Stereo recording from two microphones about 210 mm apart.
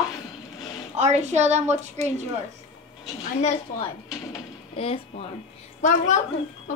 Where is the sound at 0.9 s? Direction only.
30° right (ahead or behind).